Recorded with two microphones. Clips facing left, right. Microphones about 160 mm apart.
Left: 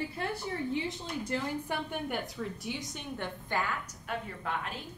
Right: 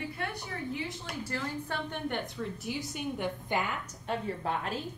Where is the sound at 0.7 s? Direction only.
20° left (ahead or behind); by 3.8 s 20° right (ahead or behind).